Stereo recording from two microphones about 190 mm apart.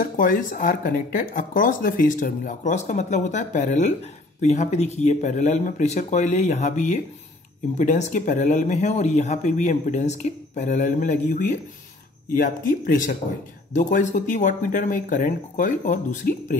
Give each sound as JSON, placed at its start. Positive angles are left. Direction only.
{"t": 0.0, "sound": "speech", "side_deg": 45}